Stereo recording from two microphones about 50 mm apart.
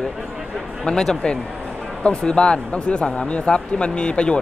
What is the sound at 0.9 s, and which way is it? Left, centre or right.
A man's voice, centre.